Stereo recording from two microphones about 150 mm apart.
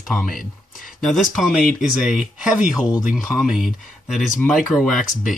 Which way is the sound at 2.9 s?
20° left (ahead or behind).